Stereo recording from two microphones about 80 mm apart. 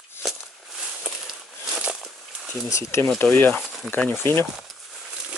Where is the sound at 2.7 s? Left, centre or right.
Left.